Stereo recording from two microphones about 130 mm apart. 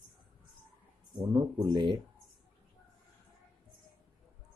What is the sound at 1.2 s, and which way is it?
Speech, 30° right (ahead or behind).